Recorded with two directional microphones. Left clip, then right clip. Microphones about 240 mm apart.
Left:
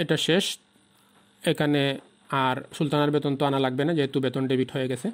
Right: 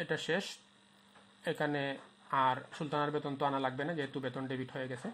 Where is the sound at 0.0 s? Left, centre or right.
Left.